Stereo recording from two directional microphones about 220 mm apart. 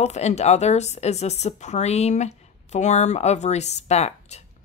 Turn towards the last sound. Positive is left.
turn(degrees=30)  # may be behind; listen again after turning